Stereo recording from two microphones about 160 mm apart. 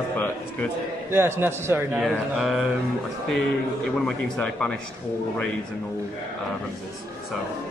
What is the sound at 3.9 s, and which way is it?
Speech, 5° left (ahead or behind).